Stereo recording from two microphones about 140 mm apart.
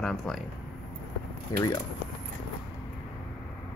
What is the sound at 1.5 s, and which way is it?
Speech, 25° left (ahead or behind).